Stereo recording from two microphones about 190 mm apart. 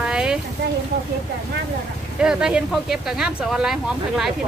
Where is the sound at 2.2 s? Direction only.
5° right (ahead or behind).